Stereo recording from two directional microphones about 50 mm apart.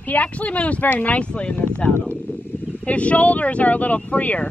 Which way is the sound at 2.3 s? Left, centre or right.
Left.